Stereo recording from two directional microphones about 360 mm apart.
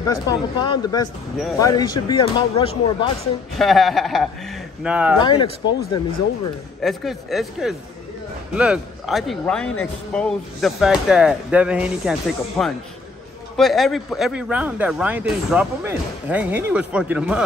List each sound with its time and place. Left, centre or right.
0.0 s speech: centre
3.5 s speech: centre
5.2 s speech: centre
6.8 s speech: centre